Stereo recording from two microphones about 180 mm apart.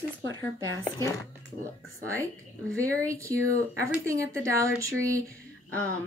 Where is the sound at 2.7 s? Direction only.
10° left (ahead or behind).